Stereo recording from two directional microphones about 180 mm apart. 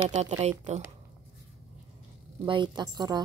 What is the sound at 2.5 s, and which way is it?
Speech, 25° right (ahead or behind).